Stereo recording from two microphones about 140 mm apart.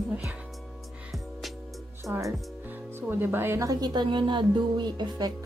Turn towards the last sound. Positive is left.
turn(degrees=-30)  # may be behind; listen again after turning